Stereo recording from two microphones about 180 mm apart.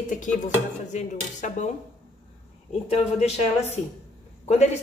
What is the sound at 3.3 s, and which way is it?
Speech, 35° left (ahead or behind).